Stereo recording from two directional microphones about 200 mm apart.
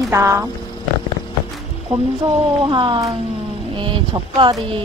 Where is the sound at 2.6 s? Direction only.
25° right (ahead or behind).